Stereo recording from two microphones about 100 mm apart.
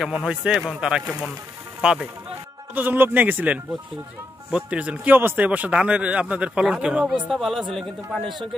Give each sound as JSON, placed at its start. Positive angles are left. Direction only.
{"t": 0.0, "sound": "speech", "side_deg": -10}
{"t": 2.7, "sound": "a man's voice", "side_deg": -20}